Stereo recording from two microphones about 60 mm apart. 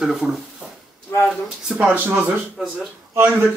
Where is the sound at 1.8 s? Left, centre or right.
Right.